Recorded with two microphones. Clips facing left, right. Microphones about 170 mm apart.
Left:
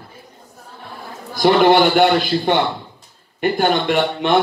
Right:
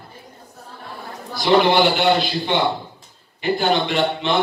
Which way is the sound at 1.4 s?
50° left (ahead or behind).